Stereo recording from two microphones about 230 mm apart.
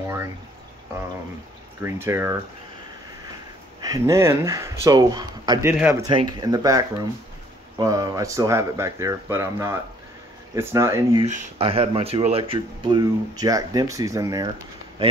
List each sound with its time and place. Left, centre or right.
1.8 s speech: centre
3.8 s speech: centre
11.2 s speech: right